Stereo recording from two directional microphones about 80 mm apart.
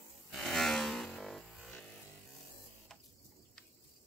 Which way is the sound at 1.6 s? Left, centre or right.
Centre.